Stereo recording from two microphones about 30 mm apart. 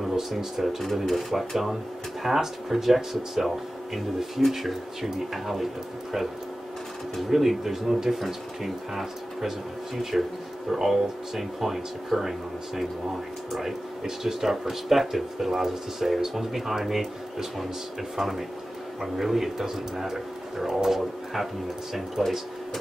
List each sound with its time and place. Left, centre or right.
0.0 s a sound: centre
0.6 s speech: centre
7.2 s speech: centre
22.2 s speech: centre